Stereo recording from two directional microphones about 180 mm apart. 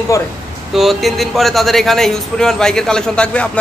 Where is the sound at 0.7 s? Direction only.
Centre (ahead or behind).